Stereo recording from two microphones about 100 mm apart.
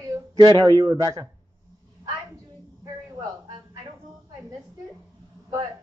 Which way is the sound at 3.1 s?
50° right (ahead or behind).